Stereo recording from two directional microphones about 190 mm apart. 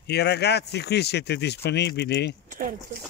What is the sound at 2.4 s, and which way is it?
Speech, 45° right (ahead or behind).